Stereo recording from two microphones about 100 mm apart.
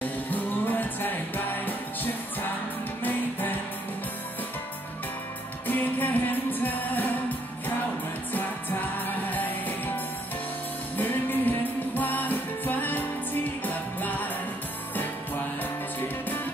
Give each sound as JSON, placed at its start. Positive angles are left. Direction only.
{"t": 0.0, "sound": "music", "side_deg": 20}
{"t": 5.7, "sound": "music", "side_deg": 15}
{"t": 11.0, "sound": "music", "side_deg": 20}
{"t": 15.6, "sound": "music", "side_deg": 20}